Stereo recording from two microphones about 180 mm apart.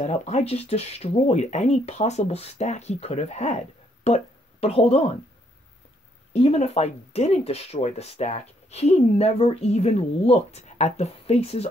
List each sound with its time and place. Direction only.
0.0 s speech: 40° left (ahead or behind)
6.3 s speech: 35° left (ahead or behind)